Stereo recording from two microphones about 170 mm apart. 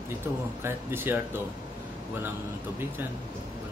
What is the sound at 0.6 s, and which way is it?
Speech, 10° right (ahead or behind).